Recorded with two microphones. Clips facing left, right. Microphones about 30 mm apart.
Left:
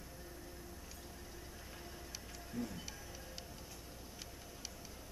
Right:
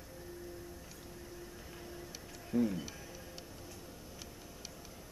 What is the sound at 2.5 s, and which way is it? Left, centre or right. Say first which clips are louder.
Speech: right 11 dB; centre.